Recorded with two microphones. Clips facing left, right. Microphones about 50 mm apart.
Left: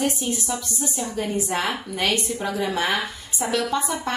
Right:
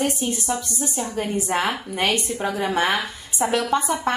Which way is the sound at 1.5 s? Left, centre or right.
Right.